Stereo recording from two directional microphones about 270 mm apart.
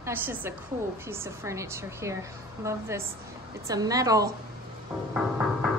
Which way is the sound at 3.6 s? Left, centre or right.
Centre.